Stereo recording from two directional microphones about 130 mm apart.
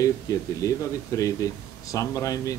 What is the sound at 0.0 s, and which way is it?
A woman's voice, 25° left (ahead or behind).